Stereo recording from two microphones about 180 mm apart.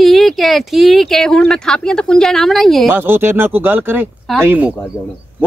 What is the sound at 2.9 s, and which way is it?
Speech, 10° right (ahead or behind).